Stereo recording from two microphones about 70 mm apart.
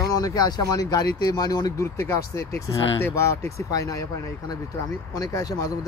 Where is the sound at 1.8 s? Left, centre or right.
Left.